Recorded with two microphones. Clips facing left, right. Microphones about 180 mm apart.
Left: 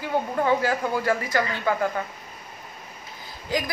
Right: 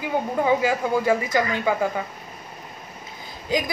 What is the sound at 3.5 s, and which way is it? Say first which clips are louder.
Speech: right 3 dB; 20° right (ahead or behind).